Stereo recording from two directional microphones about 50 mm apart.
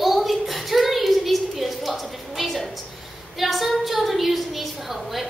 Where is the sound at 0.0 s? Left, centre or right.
Centre.